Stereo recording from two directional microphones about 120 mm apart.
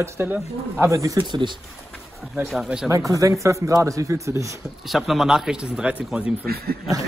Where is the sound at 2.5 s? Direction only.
5° right (ahead or behind).